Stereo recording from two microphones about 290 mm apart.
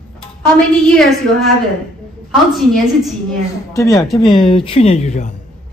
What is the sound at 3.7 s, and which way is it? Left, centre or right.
Speech, centre.